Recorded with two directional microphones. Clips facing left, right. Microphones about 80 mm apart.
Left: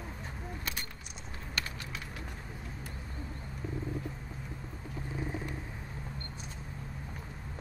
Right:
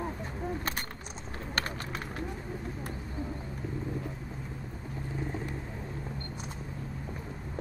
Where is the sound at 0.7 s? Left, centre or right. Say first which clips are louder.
Right 5 dB; right.